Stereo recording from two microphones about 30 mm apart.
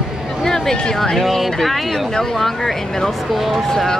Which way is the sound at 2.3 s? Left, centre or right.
Centre.